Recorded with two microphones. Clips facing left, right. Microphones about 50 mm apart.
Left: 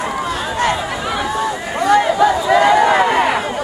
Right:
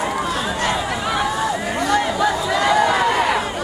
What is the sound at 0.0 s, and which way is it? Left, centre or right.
Run, centre.